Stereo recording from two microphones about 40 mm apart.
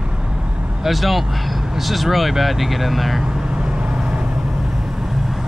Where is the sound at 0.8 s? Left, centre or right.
Centre.